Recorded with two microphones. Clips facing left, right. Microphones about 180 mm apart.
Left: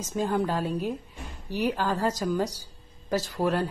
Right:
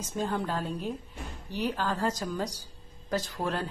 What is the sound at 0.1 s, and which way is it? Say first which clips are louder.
A woman's voice: left 5 dB; 10° left (ahead or behind).